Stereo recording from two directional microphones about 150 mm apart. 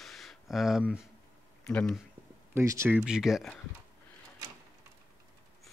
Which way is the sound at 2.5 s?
20° right (ahead or behind).